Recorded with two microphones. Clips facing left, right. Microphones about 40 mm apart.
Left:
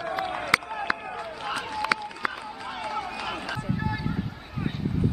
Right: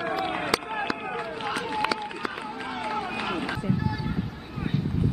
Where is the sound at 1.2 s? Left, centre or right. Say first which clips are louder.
Left 1 dB; centre.